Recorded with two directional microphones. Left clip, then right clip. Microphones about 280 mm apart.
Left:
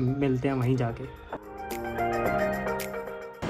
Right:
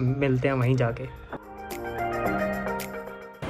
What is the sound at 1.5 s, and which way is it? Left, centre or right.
Music, centre.